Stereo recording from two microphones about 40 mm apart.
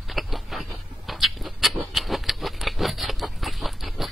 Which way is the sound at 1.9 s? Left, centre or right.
Centre.